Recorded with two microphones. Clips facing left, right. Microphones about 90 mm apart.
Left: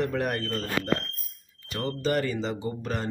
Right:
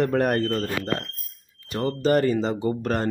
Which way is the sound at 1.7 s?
40° right (ahead or behind).